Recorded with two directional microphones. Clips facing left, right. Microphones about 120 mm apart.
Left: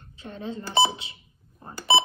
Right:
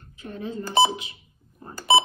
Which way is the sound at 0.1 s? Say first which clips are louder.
Right 1 dB; 30° left (ahead or behind).